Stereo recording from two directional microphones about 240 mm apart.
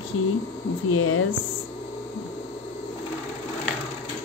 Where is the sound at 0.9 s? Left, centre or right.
Left.